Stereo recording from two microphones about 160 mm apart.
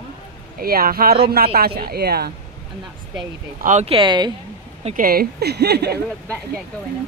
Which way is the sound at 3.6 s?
50° right (ahead or behind).